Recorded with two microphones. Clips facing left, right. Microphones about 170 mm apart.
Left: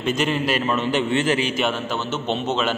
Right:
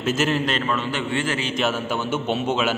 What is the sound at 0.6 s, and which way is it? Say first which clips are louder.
Speech: left 3 dB; 20° left (ahead or behind).